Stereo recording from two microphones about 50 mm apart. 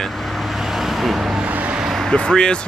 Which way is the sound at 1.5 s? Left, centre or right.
Right.